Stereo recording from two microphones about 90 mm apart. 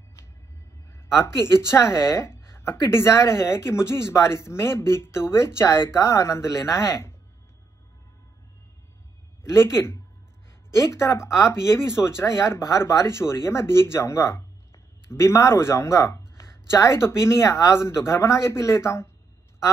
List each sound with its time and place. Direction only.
1.0 s speech: 30° left (ahead or behind)
9.4 s speech: 30° left (ahead or behind)